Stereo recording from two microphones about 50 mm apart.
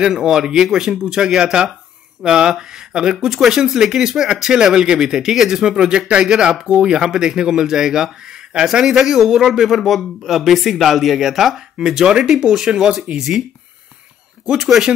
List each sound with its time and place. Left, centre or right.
0.0 s speech: centre